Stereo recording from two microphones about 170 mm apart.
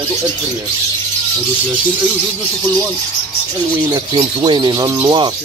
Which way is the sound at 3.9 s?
30° right (ahead or behind).